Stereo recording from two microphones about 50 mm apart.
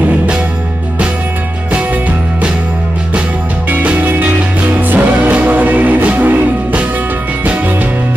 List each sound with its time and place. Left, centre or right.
3.8 s music: right